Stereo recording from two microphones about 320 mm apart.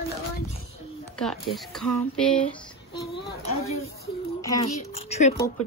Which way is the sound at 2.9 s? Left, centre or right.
Centre.